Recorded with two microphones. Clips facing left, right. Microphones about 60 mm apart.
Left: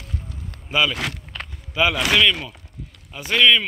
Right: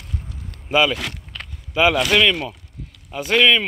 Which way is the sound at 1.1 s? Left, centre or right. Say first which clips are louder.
Left 2 dB; centre.